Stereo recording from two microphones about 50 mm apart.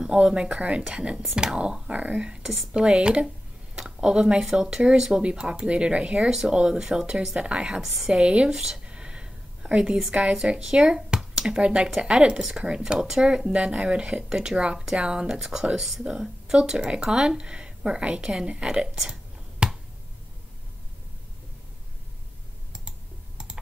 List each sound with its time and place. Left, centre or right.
0.0 s a woman's voice: centre
8.8 s a sound: centre
10.1 s a woman's voice: right
10.6 s speech: centre
19.6 s finger snapping: centre
22.7 s computer keyboard: centre